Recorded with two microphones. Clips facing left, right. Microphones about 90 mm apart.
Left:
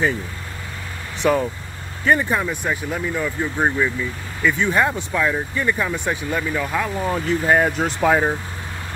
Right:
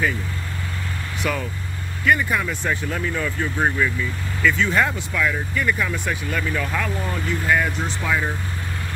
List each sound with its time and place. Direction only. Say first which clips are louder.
1.2 s speech: left 8 dB; 30° left (ahead or behind)
2.5 s speech: left 1 dB; 15° left (ahead or behind)
7.1 s speech: left 5 dB; 35° left (ahead or behind)